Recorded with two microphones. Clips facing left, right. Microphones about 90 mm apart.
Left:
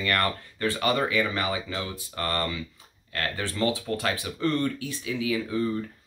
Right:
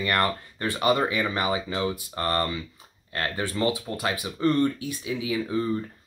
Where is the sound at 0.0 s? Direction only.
20° right (ahead or behind).